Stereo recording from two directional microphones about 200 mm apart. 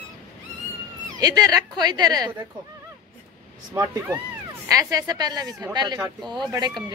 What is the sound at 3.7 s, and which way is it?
Speech, 15° right (ahead or behind).